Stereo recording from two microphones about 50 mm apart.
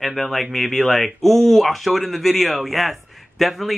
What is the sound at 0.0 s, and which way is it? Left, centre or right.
Speech, centre.